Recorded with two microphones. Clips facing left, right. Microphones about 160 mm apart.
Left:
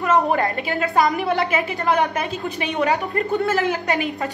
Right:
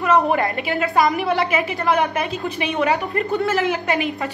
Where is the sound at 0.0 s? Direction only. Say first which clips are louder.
Right 1 dB; 40° left (ahead or behind).